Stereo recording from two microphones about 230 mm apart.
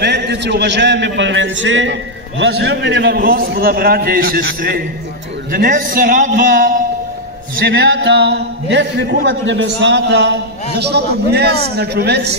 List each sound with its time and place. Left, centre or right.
0.0 s a man's voice: right
5.5 s a man's voice: right